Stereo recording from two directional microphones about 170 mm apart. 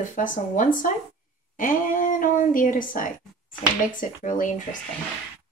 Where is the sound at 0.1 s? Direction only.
50° left (ahead or behind).